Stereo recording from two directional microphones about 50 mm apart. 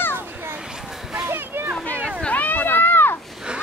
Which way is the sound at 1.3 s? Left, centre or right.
Right.